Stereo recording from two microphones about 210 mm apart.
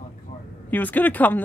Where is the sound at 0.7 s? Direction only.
10° left (ahead or behind).